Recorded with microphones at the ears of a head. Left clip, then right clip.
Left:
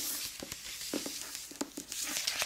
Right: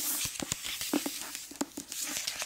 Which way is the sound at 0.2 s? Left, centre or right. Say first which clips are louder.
Right 6 dB; right.